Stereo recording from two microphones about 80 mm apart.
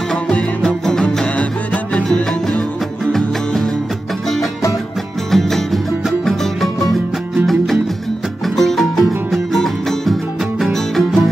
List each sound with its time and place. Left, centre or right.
0.7 s music: centre
3.1 s music: centre
5.3 s music: centre